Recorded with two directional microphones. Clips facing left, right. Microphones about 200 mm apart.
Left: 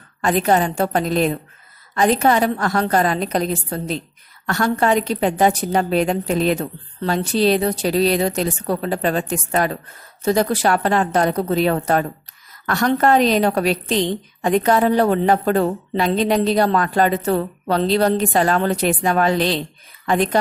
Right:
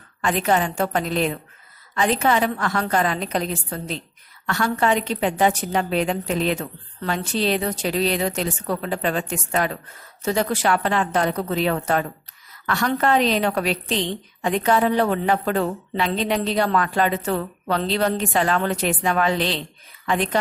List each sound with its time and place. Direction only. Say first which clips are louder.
0.2 s a woman's voice: left 4 dB; 40° left (ahead or behind)